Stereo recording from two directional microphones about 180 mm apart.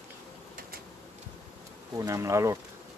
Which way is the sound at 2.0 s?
15° right (ahead or behind).